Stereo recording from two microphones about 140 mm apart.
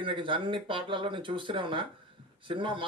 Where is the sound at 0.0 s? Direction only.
35° right (ahead or behind).